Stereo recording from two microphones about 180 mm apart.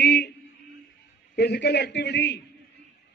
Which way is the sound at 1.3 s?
65° left (ahead or behind).